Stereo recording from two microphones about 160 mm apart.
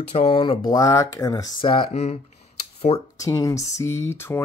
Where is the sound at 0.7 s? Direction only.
20° left (ahead or behind).